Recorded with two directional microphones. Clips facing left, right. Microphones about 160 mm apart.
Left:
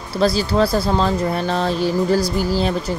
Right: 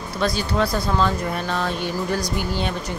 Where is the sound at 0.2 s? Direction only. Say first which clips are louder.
Left 5 dB; 35° left (ahead or behind).